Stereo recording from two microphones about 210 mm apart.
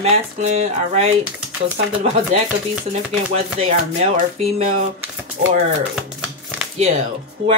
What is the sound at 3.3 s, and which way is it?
Speech, 30° right (ahead or behind).